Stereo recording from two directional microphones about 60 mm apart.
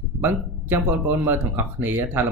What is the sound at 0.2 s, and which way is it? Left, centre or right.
Speech, right.